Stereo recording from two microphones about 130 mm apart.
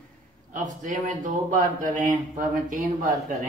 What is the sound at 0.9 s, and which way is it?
Speech, 85° right.